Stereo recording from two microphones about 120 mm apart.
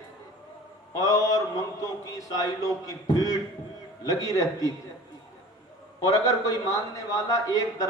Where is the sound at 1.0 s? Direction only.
30° left (ahead or behind).